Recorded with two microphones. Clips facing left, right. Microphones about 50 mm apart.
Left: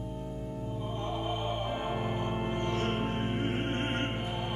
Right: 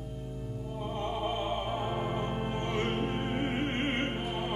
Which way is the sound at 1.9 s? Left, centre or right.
Left.